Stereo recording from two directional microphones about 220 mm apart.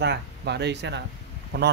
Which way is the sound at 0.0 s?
50° right (ahead or behind).